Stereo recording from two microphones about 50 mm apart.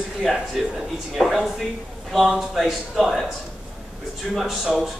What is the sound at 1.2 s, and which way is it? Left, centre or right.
A man's voice, centre.